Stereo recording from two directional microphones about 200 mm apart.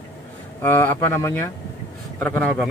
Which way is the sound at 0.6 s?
10° left (ahead or behind).